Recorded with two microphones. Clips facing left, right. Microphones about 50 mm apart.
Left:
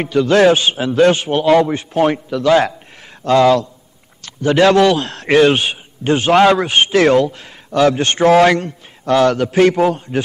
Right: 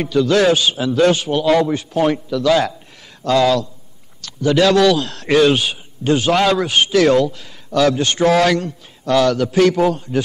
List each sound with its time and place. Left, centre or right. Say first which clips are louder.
0.0 s a man's voice: left 3 dB; left